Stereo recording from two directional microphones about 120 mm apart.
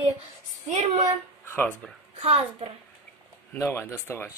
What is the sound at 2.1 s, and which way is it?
Speech, 60° right (ahead or behind).